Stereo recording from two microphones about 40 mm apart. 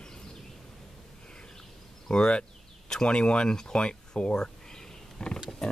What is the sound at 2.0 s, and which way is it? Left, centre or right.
Speech, left.